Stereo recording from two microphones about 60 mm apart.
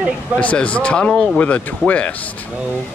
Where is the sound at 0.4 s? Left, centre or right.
Left; by 1.4 s centre.